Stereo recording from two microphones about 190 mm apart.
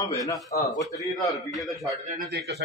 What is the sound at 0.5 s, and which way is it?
Speech, 55° left (ahead or behind).